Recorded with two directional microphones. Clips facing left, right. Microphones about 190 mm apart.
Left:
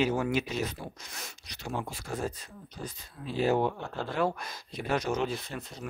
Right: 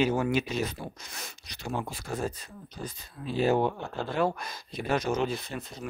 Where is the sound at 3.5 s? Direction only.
30° right (ahead or behind).